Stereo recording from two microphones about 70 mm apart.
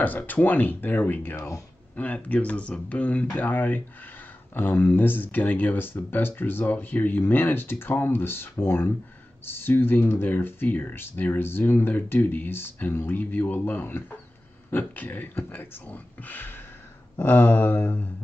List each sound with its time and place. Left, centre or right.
0.0 s speech: left